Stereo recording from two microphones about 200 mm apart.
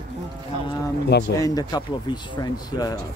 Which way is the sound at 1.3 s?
20° left (ahead or behind).